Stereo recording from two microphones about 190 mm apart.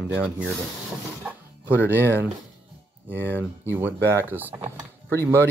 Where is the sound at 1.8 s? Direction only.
10° right (ahead or behind).